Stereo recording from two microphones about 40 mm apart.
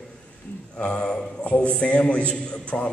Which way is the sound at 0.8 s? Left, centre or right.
Left.